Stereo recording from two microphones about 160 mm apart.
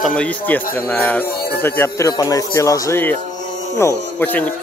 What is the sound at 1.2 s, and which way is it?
Music, 75° left (ahead or behind).